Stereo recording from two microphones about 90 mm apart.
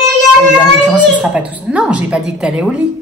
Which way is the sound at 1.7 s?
15° right (ahead or behind).